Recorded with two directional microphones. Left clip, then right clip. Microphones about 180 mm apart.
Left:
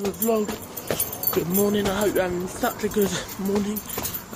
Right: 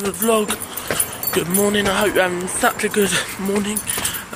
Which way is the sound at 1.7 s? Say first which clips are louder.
Right 5 dB; 10° left (ahead or behind).